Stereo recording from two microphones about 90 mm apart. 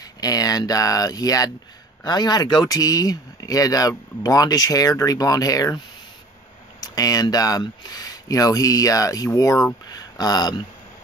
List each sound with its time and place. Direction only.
0.0 s speech: 45° left (ahead or behind)
6.8 s speech: 45° left (ahead or behind)